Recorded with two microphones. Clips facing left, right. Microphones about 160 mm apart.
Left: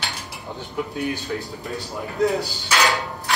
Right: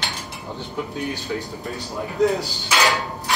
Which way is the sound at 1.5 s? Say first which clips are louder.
Right 1 dB; centre (ahead or behind).